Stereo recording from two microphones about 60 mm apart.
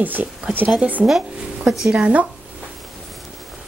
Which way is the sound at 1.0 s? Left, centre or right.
Centre.